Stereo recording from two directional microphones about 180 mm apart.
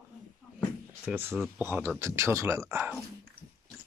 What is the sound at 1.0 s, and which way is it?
Speech, 10° right (ahead or behind).